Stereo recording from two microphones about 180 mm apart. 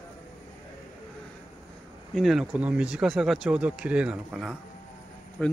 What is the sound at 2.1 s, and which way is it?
Speech, centre (ahead or behind).